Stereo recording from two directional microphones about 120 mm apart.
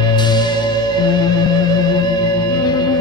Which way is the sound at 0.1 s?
35° left (ahead or behind).